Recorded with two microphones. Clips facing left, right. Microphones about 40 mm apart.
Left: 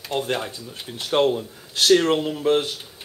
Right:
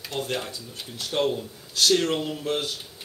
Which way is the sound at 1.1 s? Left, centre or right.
Left.